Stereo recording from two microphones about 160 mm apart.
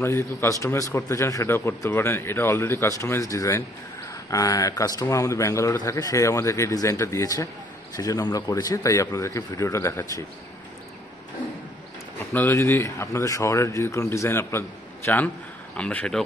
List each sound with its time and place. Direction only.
0.0 s speech: 15° left (ahead or behind)
12.3 s speech: 15° left (ahead or behind)
15.7 s speech: 10° left (ahead or behind)